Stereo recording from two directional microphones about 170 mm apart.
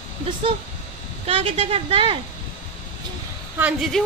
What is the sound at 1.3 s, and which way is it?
Speech, 35° right (ahead or behind).